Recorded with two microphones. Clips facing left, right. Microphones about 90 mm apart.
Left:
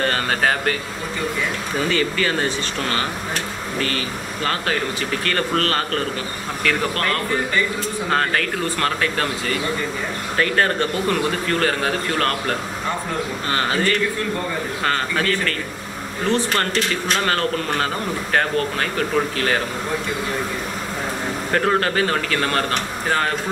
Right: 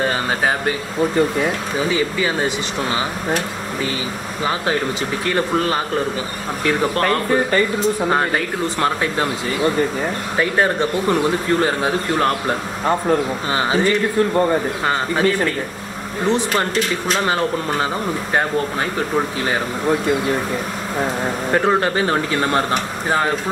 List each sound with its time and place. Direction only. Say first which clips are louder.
0.0 s speech: right 1 dB; 10° right (ahead or behind)
1.8 s speech: even; 10° right (ahead or behind)
5.2 s speech: right 3 dB; 10° right (ahead or behind)
6.6 s speech: right 4 dB; 20° right (ahead or behind)
8.1 s speech: right 2 dB; 15° right (ahead or behind)
21.5 s a man's voice: right 2 dB; 15° right (ahead or behind)